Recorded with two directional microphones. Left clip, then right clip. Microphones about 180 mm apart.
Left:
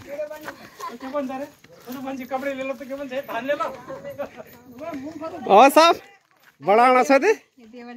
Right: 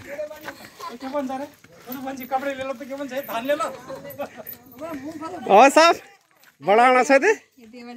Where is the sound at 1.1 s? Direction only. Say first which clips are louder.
Right 1 dB; 25° left (ahead or behind).